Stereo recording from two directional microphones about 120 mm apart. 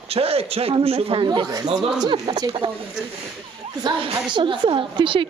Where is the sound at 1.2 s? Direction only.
35° right (ahead or behind).